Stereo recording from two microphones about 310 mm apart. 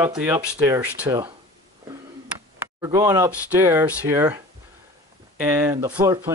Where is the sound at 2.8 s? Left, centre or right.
Centre.